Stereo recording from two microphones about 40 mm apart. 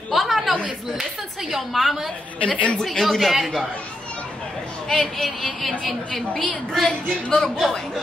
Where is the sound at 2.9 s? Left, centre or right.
Centre.